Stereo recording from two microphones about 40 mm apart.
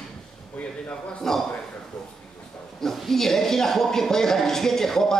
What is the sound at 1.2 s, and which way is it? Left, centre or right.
Speech, centre.